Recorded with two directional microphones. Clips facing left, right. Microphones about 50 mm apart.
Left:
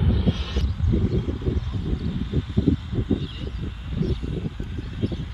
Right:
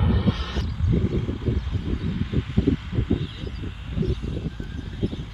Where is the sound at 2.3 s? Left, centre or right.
Right.